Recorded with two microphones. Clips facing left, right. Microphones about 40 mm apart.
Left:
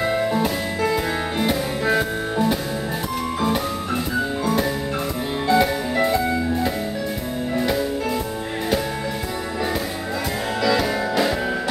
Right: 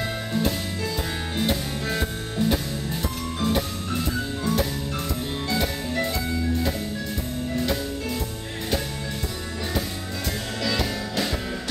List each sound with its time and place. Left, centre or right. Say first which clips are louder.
0.8 s music: left 9 dB; left
5.5 s music: left 9 dB; centre
10.6 s music: left 7 dB; centre